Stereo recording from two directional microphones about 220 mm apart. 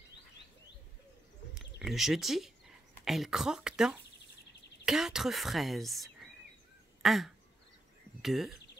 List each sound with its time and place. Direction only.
1.8 s speech: centre (ahead or behind)
7.0 s duck: centre (ahead or behind)
8.2 s speech: centre (ahead or behind)